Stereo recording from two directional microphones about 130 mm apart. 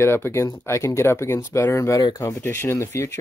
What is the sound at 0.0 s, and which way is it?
Speech, 20° left (ahead or behind).